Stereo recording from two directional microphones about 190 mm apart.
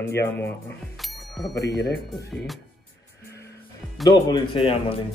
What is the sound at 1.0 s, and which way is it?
Bicycle bell, centre (ahead or behind).